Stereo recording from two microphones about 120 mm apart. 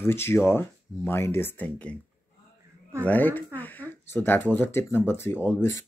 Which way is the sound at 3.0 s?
15° left (ahead or behind).